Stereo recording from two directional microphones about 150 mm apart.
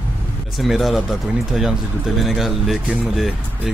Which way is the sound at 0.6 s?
Centre (ahead or behind).